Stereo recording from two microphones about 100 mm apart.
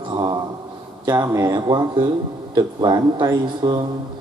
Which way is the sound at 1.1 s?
30° right (ahead or behind).